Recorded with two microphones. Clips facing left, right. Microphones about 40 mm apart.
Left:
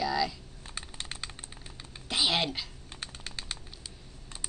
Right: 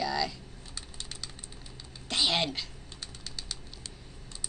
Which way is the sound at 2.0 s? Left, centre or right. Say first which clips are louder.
Even; centre.